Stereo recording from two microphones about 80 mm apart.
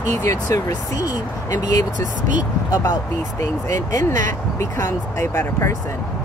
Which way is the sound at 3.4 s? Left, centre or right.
Left.